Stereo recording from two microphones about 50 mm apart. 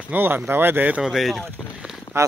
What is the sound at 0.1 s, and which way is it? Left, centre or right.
Speech, right.